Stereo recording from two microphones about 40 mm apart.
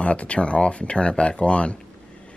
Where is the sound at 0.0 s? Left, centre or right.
Left.